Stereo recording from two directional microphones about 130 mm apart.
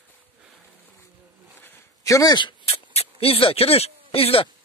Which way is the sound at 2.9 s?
45° left (ahead or behind).